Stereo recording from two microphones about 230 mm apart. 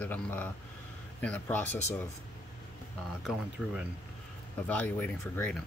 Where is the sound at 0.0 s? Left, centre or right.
Centre.